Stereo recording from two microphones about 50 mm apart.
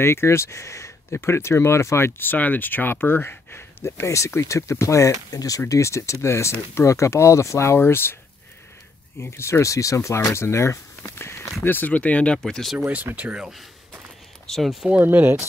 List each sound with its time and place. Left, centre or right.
0.0 s speech: left
6.2 s speech: left
6.9 s speech: left
7.8 s speech: left
9.2 s speech: left
11.6 s speech: left
11.9 s speech: left
12.4 s speech: centre
12.7 s speech: right
14.5 s speech: centre
15.0 s speech: right